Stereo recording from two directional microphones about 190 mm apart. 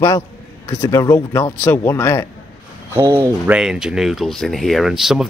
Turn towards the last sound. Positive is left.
turn(degrees=0)  # may be behind; listen again after turning